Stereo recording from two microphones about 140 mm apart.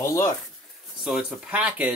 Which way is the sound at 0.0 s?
20° left (ahead or behind).